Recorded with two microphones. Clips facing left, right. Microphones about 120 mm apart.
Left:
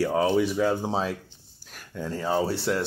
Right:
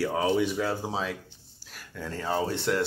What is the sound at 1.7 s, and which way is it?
Speech, 15° left (ahead or behind).